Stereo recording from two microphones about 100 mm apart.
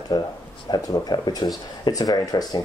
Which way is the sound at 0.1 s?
40° left (ahead or behind).